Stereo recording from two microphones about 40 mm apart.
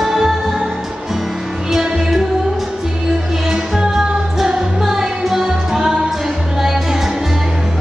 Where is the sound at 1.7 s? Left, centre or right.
Centre.